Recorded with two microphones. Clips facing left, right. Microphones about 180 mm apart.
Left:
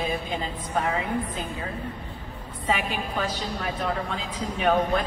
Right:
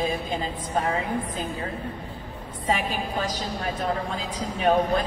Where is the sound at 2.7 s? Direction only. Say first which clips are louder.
Right 1 dB; 40° right (ahead or behind).